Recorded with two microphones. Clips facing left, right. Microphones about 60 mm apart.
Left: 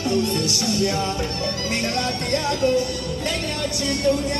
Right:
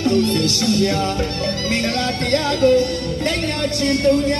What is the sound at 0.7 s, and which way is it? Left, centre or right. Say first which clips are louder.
Music: right 4 dB; right.